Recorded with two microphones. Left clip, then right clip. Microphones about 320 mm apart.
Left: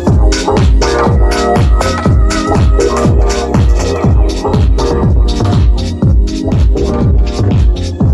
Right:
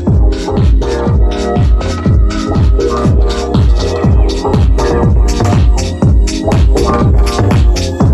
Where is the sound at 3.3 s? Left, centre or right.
Centre.